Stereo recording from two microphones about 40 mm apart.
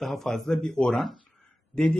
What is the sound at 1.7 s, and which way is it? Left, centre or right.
Speech, left.